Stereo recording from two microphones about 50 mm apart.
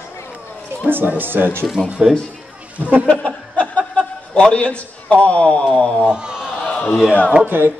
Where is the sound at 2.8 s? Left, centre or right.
Right.